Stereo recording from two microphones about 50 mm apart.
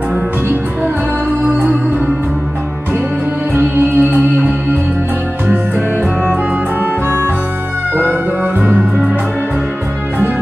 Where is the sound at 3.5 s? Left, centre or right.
Right.